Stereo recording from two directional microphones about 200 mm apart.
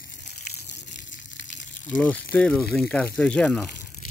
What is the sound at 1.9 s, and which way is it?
Speech, 5° left (ahead or behind).